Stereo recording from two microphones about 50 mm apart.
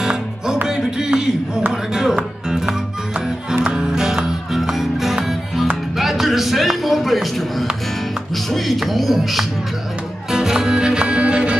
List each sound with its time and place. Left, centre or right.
0.0 s music: centre
0.7 s a sound: centre
1.7 s music: centre
3.5 s music: right
3.9 s music: centre